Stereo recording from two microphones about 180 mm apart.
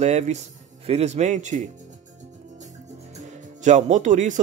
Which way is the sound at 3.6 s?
40° right (ahead or behind).